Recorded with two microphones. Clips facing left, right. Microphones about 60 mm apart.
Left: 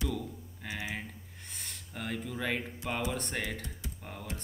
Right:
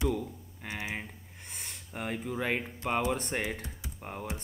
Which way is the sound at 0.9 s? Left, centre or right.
Centre.